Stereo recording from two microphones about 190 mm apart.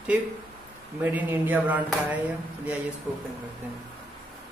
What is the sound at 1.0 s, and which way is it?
A man's voice, 10° right (ahead or behind).